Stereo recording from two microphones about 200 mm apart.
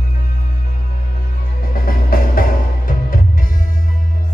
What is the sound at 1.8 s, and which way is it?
Music, 45° left (ahead or behind).